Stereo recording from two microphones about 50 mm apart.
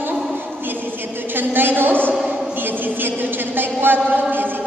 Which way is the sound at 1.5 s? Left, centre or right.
Right.